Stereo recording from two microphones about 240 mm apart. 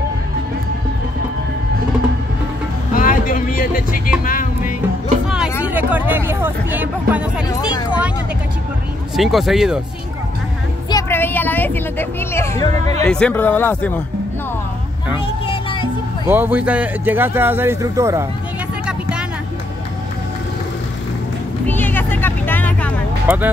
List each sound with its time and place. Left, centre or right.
2.9 s vehicle: left
4.2 s music: left
5.6 s speech: centre
7.4 s speech: centre
9.1 s speech: centre
10.9 s speech: centre
15.2 s music: left
16.3 s speech: centre
18.9 s a sound: centre
21.6 s vehicle: centre
23.2 s speech: centre